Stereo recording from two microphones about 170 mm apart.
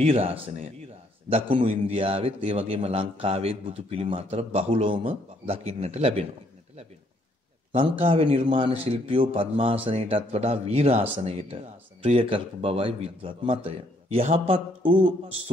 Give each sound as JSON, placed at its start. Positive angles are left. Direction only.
{"t": 0.0, "sound": "speech", "side_deg": -35}
{"t": 8.0, "sound": "speech", "side_deg": -35}